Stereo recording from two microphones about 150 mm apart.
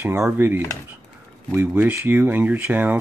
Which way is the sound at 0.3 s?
15° right (ahead or behind).